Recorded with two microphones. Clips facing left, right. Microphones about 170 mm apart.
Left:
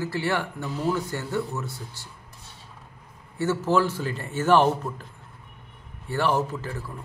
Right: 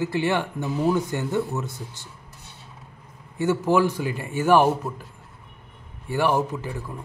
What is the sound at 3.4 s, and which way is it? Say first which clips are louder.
A man's voice: right 2 dB; 15° right (ahead or behind).